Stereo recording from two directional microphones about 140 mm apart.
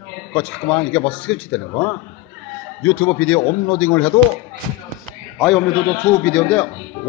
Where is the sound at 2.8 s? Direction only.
15° left (ahead or behind).